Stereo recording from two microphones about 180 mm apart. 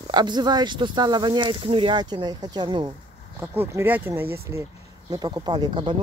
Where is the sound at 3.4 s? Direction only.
10° right (ahead or behind).